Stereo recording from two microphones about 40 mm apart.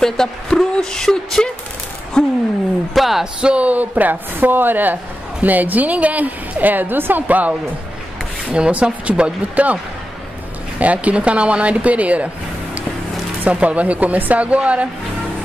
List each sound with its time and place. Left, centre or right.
0.0 s speech: centre
2.9 s speech: centre
3.3 s speech: right
3.6 s a woman's voice: right
8.5 s speech: right
10.8 s speech: right
13.5 s speech: right